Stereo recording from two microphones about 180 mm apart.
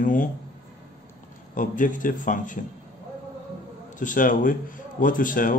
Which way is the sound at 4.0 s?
45° left (ahead or behind).